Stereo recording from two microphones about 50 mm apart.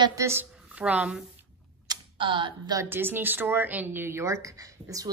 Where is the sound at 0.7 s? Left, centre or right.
Right.